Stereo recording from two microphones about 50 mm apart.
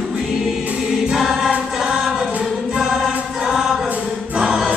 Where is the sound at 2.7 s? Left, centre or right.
Centre.